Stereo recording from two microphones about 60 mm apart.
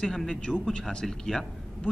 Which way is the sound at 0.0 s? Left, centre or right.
Centre.